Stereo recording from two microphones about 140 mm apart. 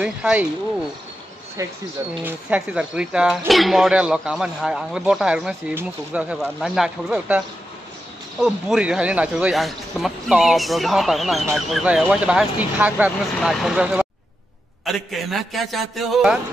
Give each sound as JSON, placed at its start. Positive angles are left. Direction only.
{"t": 0.0, "sound": "speech", "side_deg": -10}
{"t": 1.6, "sound": "speech", "side_deg": -25}
{"t": 2.2, "sound": "speech", "side_deg": -10}
{"t": 15.0, "sound": "speech", "side_deg": 0}